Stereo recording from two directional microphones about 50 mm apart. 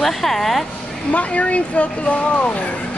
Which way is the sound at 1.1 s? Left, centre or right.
Left.